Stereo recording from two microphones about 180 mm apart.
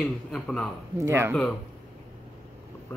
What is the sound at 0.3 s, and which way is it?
Speech, 5° left (ahead or behind).